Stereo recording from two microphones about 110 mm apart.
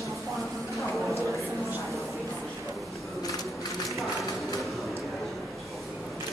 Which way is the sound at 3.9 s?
Centre (ahead or behind).